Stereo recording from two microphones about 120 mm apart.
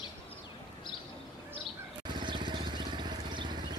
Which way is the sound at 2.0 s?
40° right (ahead or behind).